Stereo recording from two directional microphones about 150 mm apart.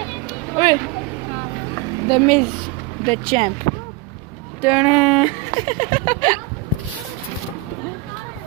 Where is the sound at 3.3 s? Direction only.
45° right (ahead or behind).